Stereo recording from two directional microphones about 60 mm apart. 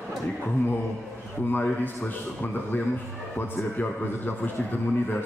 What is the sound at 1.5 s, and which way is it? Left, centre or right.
A man's voice, left.